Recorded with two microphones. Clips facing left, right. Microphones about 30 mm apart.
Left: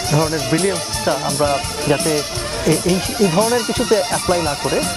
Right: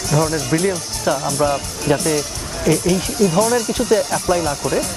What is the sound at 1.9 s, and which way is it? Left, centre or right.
Speech, left.